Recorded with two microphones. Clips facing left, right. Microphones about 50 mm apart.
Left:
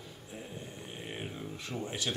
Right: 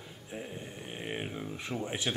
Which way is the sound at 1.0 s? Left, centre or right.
Right.